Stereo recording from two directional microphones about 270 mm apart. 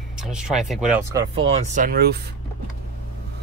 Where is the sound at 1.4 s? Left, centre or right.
Right.